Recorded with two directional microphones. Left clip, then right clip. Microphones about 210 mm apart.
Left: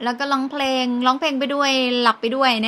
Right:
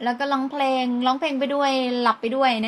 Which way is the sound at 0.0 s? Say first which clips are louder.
Left 2 dB; 20° left (ahead or behind).